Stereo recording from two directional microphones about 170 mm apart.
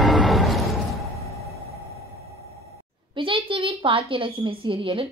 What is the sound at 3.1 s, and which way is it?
A woman's voice, 30° right (ahead or behind).